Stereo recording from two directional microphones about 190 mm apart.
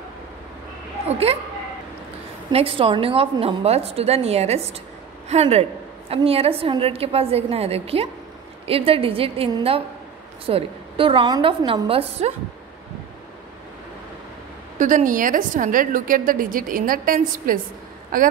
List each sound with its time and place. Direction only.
1.0 s speech: 30° right (ahead or behind)
2.5 s a woman's voice: 30° right (ahead or behind)
14.8 s a woman's voice: 40° right (ahead or behind)